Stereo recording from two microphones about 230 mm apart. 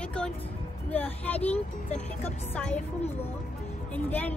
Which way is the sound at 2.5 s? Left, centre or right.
Centre.